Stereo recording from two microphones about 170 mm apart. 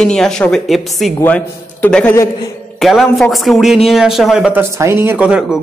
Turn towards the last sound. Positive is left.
turn(degrees=-5)  # may be behind; listen again after turning